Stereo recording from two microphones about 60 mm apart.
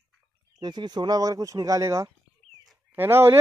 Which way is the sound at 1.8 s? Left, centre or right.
Right.